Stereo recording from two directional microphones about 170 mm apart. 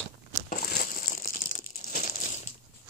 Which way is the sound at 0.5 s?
60° left (ahead or behind).